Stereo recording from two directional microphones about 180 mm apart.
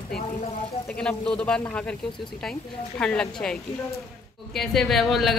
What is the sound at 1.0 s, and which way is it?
Speech, 5° left (ahead or behind).